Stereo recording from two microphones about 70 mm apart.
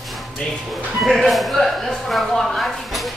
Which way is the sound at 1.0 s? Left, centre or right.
Centre.